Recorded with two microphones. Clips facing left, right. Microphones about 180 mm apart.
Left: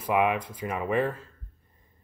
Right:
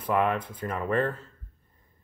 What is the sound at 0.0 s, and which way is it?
Speech, 10° left (ahead or behind).